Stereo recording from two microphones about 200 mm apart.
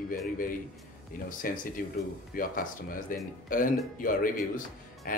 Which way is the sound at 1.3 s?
45° left (ahead or behind).